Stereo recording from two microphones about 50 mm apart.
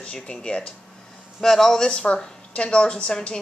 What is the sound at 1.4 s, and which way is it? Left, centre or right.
Speech, centre.